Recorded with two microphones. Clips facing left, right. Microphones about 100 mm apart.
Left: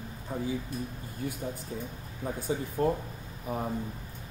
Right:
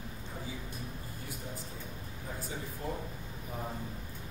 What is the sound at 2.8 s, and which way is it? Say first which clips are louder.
Speech: left 13 dB; 80° left.